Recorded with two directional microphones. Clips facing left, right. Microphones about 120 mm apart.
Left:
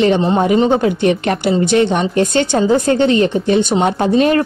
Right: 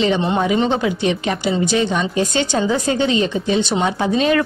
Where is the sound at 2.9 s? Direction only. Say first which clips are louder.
Left 5 dB; 60° left (ahead or behind).